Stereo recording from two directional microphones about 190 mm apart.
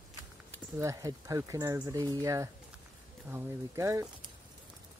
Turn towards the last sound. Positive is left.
turn(degrees=-15)  # may be behind; listen again after turning